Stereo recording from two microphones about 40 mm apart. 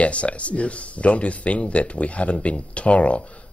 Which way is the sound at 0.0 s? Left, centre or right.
Left.